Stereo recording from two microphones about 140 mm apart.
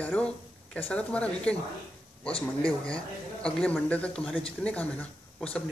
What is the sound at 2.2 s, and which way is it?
Speech, 40° left (ahead or behind).